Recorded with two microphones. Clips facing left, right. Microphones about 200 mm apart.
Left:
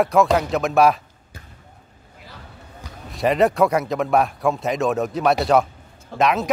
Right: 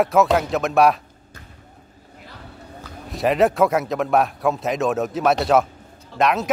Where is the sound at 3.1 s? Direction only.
Centre (ahead or behind).